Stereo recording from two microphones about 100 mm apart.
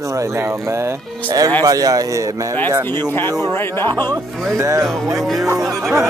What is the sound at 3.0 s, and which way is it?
Speech, 20° left (ahead or behind).